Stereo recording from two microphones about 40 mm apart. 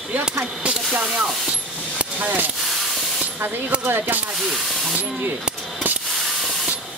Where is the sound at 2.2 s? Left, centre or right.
Right.